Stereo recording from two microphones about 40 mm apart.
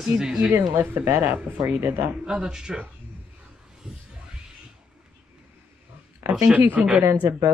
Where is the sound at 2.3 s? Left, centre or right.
Centre.